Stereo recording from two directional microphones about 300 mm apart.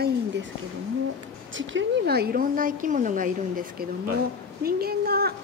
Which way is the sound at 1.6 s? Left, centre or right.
Right.